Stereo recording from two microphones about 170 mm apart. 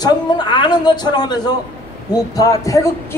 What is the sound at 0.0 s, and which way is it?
A man's voice, 25° left (ahead or behind).